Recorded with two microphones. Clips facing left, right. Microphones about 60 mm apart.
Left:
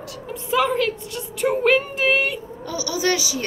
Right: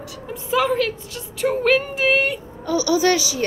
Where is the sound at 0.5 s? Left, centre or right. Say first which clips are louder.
Even; centre.